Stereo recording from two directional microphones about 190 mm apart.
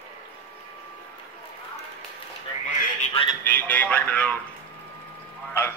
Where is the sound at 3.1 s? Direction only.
25° left (ahead or behind).